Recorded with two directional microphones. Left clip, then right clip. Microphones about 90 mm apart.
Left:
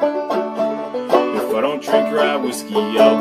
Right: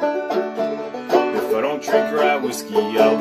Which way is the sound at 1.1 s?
30° left (ahead or behind).